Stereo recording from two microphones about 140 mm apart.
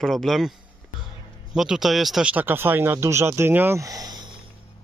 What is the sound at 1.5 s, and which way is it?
Speech, 5° right (ahead or behind).